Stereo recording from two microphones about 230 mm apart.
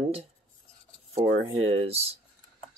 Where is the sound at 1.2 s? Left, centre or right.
Right.